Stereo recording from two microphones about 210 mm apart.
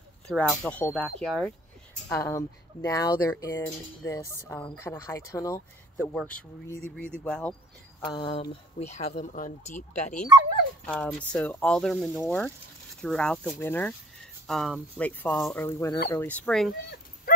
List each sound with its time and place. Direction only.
0.3 s speech: 5° left (ahead or behind)
2.0 s speech: 15° left (ahead or behind)
8.0 s speech: 20° left (ahead or behind)
10.9 s speech: 5° left (ahead or behind)